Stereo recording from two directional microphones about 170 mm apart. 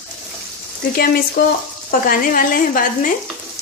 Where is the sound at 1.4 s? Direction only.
65° left (ahead or behind).